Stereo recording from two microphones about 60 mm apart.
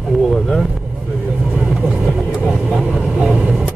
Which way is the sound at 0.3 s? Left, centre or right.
Centre.